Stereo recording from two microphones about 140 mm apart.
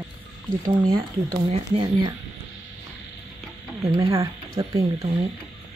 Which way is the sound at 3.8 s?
25° right (ahead or behind).